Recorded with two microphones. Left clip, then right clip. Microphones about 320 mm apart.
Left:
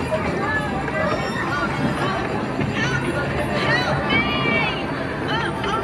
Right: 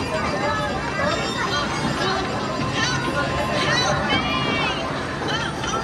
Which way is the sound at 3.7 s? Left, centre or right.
Right.